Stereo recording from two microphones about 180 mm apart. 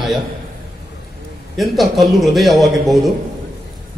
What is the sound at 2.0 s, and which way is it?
Speech, centre (ahead or behind).